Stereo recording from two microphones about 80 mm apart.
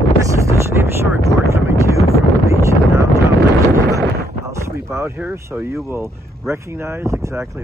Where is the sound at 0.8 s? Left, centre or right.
Right.